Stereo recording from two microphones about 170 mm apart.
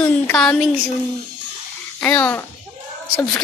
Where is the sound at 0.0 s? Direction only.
5° left (ahead or behind).